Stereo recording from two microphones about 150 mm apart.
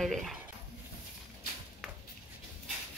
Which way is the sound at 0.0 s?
Centre (ahead or behind).